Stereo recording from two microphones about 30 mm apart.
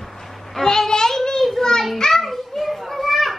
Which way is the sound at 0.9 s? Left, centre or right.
Left.